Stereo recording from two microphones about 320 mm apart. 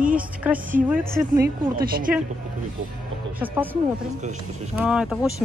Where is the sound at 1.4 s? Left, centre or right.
Right.